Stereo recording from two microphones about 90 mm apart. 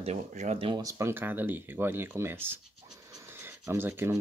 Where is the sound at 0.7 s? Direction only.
40° right (ahead or behind).